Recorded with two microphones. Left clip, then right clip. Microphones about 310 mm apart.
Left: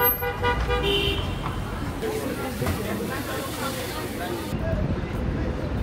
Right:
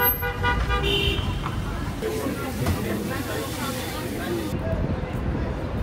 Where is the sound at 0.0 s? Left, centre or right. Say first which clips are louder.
Even; left.